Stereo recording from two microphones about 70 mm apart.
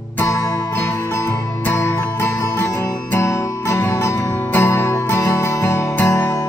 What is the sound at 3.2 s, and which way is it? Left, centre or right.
Music, left.